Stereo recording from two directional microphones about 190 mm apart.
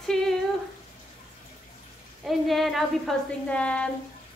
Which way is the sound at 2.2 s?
Centre (ahead or behind).